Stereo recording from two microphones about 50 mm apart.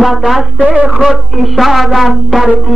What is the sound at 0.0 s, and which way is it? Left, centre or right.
Music, centre.